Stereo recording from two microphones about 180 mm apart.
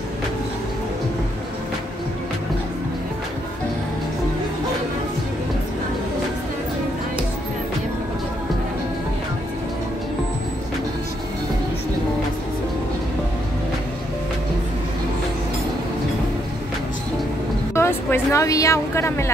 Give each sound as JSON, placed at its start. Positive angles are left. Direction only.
{"t": 17.7, "sound": "a woman's voice", "side_deg": 15}